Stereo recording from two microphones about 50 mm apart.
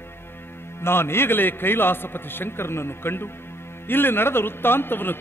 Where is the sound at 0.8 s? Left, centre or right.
Left.